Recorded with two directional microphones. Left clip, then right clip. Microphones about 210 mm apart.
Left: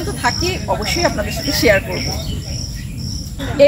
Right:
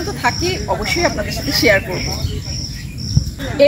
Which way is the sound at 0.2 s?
5° left (ahead or behind).